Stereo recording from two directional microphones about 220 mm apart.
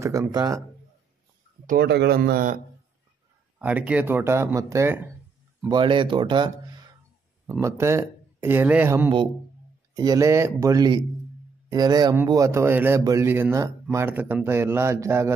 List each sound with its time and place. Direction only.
0.0 s a man's voice: 15° right (ahead or behind)
1.7 s speech: 50° right (ahead or behind)
3.5 s a man's voice: 5° right (ahead or behind)
5.7 s a man's voice: 20° right (ahead or behind)